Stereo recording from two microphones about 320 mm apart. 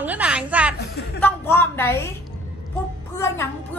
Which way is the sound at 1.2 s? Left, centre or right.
Centre.